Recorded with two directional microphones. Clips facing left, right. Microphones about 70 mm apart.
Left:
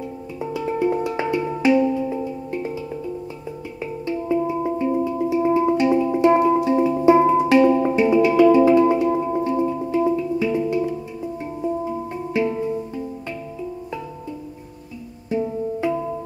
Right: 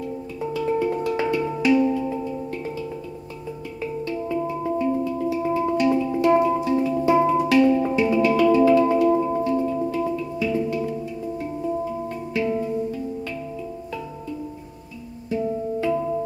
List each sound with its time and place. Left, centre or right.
0.4 s music: centre
3.8 s music: left
12.4 s music: left
15.2 s music: left